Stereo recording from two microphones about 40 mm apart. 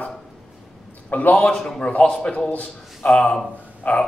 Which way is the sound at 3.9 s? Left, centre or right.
Left.